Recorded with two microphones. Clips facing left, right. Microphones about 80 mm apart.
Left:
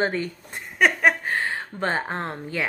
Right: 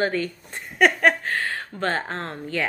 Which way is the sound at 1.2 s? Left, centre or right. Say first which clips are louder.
Left 1 dB; centre.